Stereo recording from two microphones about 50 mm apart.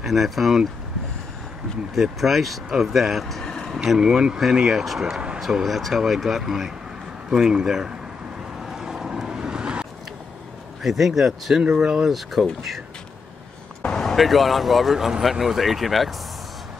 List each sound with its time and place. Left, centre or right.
0.0 s speech: centre
2.0 s speech: centre
3.4 s a sound: centre
3.7 s speech: centre
5.0 s speech: centre
5.4 s speech: centre
8.5 s vehicle: centre
10.8 s speech: centre
12.1 s speech: centre
13.9 s speech: centre